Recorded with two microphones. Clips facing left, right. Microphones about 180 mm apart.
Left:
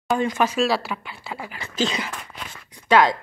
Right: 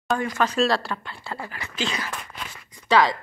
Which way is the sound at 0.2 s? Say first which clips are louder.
Left 3 dB; 20° left (ahead or behind).